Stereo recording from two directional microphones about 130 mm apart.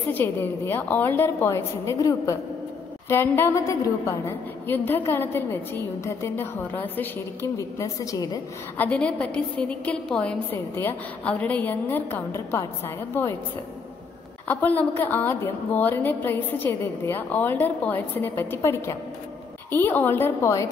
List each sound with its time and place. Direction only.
0.1 s a woman's voice: 15° left (ahead or behind)
7.5 s a woman's voice: 25° left (ahead or behind)
8.7 s a woman's voice: 10° left (ahead or behind)
14.5 s a woman's voice: 10° left (ahead or behind)